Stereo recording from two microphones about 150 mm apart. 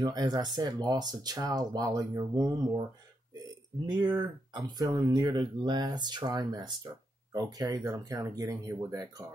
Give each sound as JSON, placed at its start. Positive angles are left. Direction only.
{"t": 0.0, "sound": "speech", "side_deg": -25}
{"t": 4.0, "sound": "speech", "side_deg": -25}